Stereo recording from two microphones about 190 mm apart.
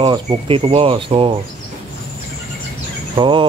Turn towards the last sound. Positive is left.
turn(degrees=-25)  # may be behind; listen again after turning